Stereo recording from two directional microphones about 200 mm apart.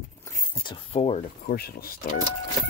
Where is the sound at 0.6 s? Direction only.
25° left (ahead or behind).